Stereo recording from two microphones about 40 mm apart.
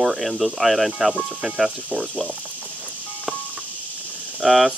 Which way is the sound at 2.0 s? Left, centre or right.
Left.